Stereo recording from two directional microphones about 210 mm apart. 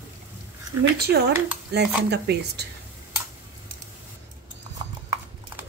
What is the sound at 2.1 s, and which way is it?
Speech, 50° right (ahead or behind).